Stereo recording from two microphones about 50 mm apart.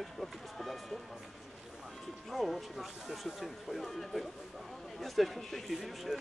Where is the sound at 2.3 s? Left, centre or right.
Centre.